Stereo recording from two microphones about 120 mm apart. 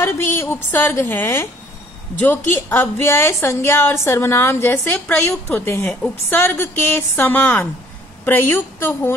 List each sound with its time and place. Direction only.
0.0 s a woman's voice: 20° left (ahead or behind)